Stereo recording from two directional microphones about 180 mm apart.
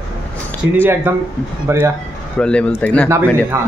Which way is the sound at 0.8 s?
10° right (ahead or behind).